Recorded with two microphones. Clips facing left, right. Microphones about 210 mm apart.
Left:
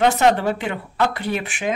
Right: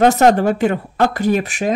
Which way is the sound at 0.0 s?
45° right (ahead or behind).